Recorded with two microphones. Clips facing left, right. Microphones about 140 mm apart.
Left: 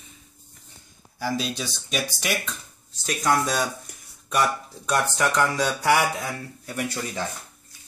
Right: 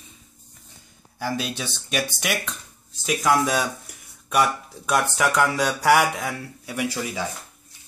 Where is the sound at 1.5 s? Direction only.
60° right (ahead or behind).